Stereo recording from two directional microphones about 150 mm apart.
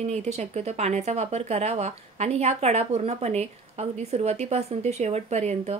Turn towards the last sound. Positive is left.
turn(degrees=-50)  # may be behind; listen again after turning